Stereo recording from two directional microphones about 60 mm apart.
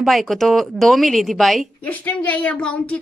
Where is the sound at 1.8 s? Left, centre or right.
Left.